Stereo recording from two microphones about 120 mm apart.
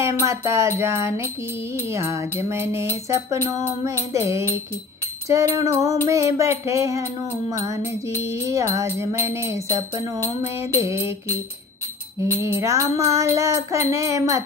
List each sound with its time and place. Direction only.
0.2 s jingle bell: 25° right (ahead or behind)
4.1 s jingle bell: 25° right (ahead or behind)
12.5 s jingle bell: 25° right (ahead or behind)